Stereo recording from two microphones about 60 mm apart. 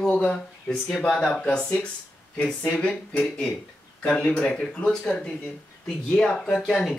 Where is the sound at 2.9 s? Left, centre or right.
Centre.